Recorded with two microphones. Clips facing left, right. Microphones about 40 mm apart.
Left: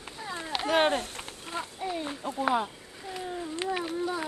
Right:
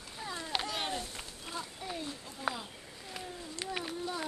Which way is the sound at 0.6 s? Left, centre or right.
Left.